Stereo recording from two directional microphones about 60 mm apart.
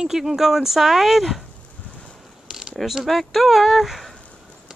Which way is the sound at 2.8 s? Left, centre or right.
Centre.